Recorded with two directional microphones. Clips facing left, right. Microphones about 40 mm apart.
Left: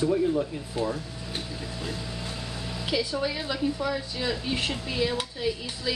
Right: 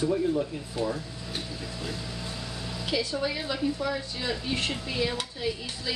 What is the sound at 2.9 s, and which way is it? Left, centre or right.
A woman's voice, centre.